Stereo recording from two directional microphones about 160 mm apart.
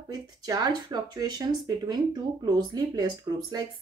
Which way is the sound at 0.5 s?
25° right (ahead or behind).